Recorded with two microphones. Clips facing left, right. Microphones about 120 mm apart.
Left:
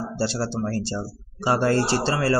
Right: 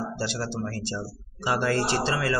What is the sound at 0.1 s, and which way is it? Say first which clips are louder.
A man's voice: left 5 dB; 30° left (ahead or behind).